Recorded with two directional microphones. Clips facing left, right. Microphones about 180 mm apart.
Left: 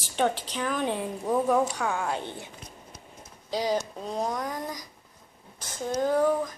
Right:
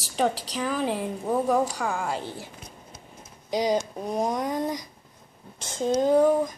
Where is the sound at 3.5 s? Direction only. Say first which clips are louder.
Right 3 dB; 15° right (ahead or behind).